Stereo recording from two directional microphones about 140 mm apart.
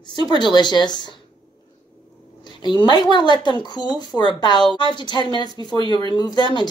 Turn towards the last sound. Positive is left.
turn(degrees=30)  # may be behind; listen again after turning